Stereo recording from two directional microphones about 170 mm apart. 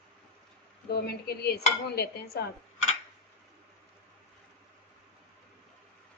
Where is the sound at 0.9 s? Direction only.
65° left (ahead or behind).